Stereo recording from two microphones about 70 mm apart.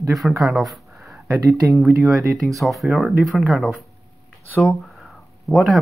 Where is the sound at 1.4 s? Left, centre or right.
Right.